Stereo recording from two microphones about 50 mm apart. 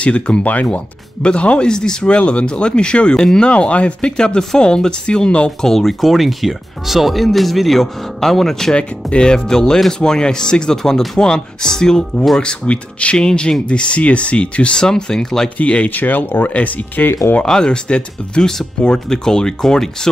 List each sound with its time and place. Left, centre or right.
0.0 s speech: left
5.7 s speech: centre
8.7 s speech: centre
15.5 s speech: left
17.4 s speech: centre